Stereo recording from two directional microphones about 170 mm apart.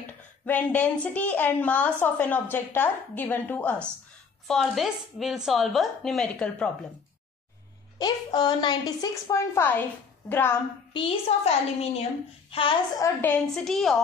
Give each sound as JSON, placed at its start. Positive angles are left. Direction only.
{"t": 0.5, "sound": "a woman's voice", "side_deg": 10}
{"t": 8.0, "sound": "a woman's voice", "side_deg": 25}
{"t": 10.9, "sound": "a woman's voice", "side_deg": 30}
{"t": 13.0, "sound": "speech", "side_deg": 10}